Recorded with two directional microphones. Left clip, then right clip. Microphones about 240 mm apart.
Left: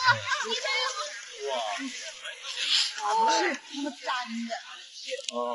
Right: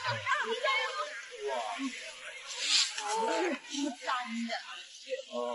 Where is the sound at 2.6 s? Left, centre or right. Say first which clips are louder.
Left 3 dB; centre.